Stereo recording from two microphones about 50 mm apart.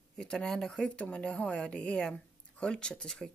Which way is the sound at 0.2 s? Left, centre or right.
Centre.